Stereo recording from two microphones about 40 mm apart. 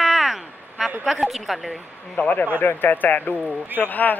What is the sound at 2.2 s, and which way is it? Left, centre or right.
Speech, left.